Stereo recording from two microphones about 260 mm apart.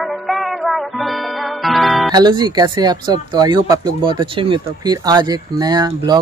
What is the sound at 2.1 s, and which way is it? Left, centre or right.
Speech, centre.